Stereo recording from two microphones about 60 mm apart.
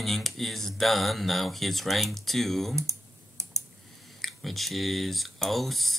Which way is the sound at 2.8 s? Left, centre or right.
Right.